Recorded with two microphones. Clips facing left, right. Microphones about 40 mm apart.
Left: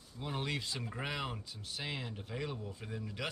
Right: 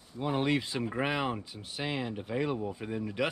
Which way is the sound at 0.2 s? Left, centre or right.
Right.